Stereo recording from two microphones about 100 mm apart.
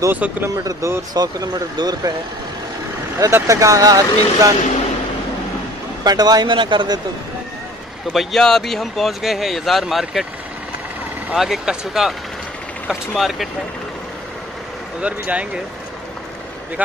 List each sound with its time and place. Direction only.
0.1 s speech: 20° right (ahead or behind)
0.7 s speech: 30° right (ahead or behind)
1.1 s speech: 40° right (ahead or behind)
3.3 s speech: 30° right (ahead or behind)
6.0 s speech: 40° right (ahead or behind)
8.1 s speech: centre (ahead or behind)
11.3 s speech: 5° right (ahead or behind)
13.2 s speech: centre (ahead or behind)
15.0 s speech: 15° right (ahead or behind)